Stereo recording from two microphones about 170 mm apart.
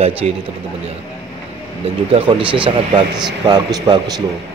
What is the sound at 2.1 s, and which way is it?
A man's voice, 30° right (ahead or behind).